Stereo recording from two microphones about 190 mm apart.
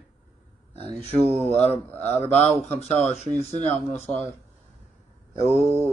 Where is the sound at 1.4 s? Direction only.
10° left (ahead or behind).